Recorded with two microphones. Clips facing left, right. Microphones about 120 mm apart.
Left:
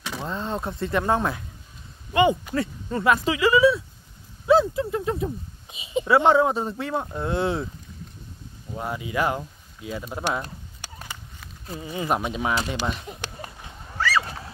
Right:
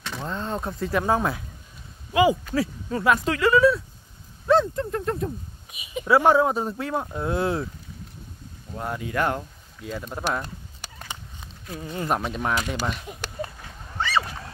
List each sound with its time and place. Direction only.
0.0 s speech: 5° left (ahead or behind)
2.5 s speech: centre (ahead or behind)
5.7 s a sound: 25° left (ahead or behind)
6.0 s speech: centre (ahead or behind)
8.7 s speech: 5° left (ahead or behind)
11.7 s speech: 5° left (ahead or behind)
13.9 s a sound: 25° right (ahead or behind)